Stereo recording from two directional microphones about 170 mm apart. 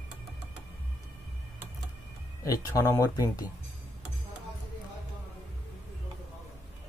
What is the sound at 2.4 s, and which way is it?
Speech, 20° left (ahead or behind).